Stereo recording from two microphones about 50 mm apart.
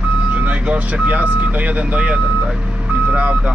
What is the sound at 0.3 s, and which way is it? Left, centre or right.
Speech, right.